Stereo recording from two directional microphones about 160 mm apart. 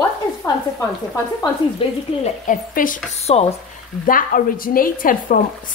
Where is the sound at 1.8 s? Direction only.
35° left (ahead or behind).